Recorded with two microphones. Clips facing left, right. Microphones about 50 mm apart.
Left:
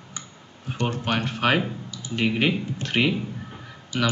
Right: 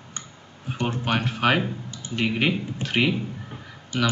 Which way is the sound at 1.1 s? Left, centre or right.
Centre.